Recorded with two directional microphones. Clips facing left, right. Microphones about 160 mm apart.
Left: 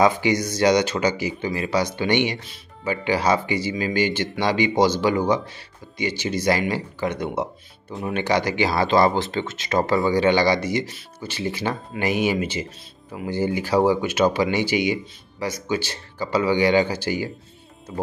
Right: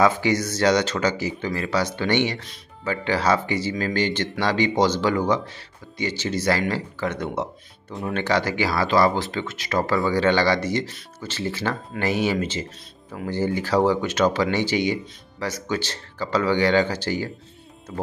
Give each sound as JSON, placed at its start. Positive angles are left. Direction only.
{"t": 0.0, "sound": "speech", "side_deg": 15}